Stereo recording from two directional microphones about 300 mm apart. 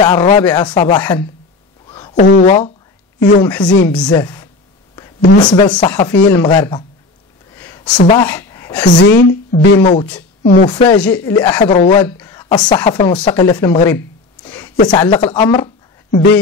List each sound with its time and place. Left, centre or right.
0.0 s speech: centre
1.9 s a sound: centre
2.2 s speech: left
7.5 s a sound: centre
8.9 s a woman's voice: left
9.8 s speech: centre
12.1 s speech: centre
14.4 s a sound: centre
14.9 s speech: centre